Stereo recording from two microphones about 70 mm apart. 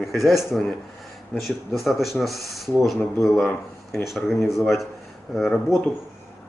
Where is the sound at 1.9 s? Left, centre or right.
Centre.